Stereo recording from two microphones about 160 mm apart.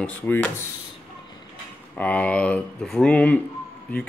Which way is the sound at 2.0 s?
10° left (ahead or behind).